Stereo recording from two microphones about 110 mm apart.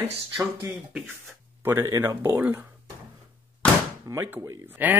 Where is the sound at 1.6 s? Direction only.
25° right (ahead or behind).